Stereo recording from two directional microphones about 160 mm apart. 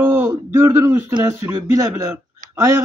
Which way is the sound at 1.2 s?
15° right (ahead or behind).